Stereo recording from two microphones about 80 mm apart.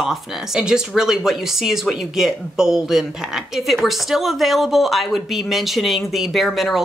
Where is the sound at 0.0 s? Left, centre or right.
Centre.